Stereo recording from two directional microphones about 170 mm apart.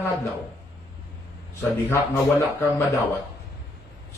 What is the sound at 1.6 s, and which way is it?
Speech, 15° left (ahead or behind).